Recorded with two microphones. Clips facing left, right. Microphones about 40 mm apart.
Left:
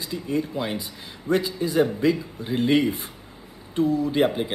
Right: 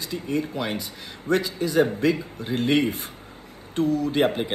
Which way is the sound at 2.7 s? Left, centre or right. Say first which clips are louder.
Left 1 dB; right.